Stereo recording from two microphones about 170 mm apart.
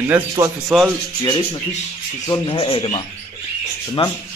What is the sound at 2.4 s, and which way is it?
Speech, 30° left (ahead or behind).